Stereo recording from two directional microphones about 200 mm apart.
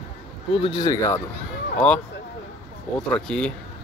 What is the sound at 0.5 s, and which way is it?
Speech, 25° left (ahead or behind).